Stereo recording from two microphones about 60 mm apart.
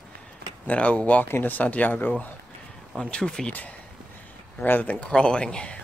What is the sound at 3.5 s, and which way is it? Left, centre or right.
Speech, left.